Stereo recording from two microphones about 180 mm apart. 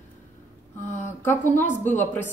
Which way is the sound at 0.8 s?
40° left (ahead or behind).